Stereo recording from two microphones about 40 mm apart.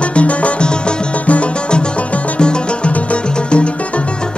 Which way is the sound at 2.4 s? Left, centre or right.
Left.